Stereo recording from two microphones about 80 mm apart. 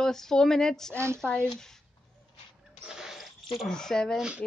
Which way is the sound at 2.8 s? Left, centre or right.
Centre.